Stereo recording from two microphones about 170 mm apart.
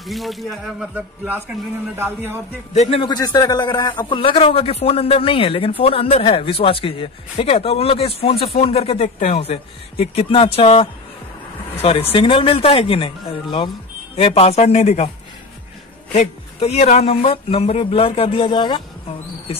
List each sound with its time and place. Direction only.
0.0 s speech: centre (ahead or behind)
0.9 s a man's voice: 10° right (ahead or behind)
2.7 s a man's voice: 40° left (ahead or behind)
16.1 s speech: 40° left (ahead or behind)